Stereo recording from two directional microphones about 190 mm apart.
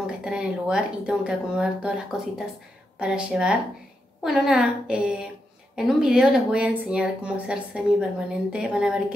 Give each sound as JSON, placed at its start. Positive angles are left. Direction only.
{"t": 0.0, "sound": "speech", "side_deg": -5}
{"t": 3.0, "sound": "speech", "side_deg": -5}